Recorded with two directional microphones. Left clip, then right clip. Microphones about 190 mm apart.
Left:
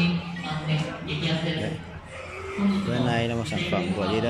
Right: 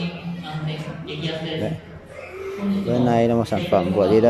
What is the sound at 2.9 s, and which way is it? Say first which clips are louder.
Speech: right 11 dB; 20° right (ahead or behind).